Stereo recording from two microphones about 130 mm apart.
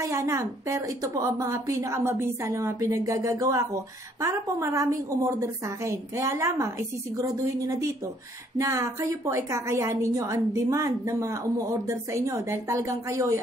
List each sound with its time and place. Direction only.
0.0 s a woman's voice: 25° right (ahead or behind)